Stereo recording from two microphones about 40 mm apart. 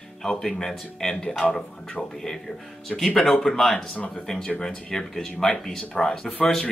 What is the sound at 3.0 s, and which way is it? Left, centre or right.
Speech, centre.